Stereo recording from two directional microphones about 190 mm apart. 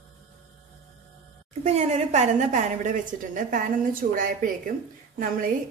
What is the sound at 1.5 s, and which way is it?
A woman's voice, 35° right (ahead or behind).